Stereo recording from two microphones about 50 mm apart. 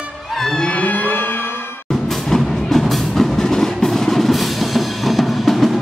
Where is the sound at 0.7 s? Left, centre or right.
Left.